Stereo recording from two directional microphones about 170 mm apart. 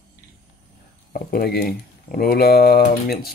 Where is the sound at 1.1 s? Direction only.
65° left (ahead or behind).